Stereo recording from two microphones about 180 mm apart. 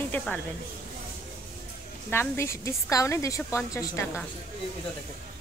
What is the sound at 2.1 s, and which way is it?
A woman's voice, 15° left (ahead or behind).